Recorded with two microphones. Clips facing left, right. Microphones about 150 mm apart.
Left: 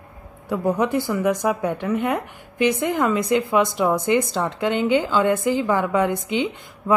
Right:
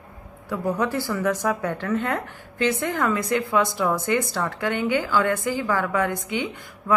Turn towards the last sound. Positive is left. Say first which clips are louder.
# left 4 dB
turn(degrees=20)  # may be behind; listen again after turning